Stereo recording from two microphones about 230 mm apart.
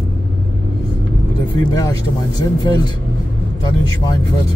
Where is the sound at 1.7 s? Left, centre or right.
Centre.